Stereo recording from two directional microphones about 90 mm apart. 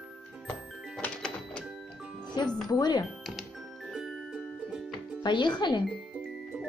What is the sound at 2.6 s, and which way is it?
Speech, 50° left (ahead or behind).